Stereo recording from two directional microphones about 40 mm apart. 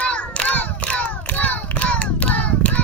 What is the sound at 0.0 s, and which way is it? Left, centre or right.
Crowd, left.